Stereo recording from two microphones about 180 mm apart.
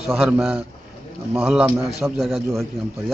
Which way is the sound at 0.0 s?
5° right (ahead or behind).